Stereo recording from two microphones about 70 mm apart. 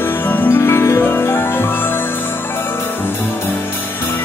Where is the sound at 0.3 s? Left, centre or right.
Left.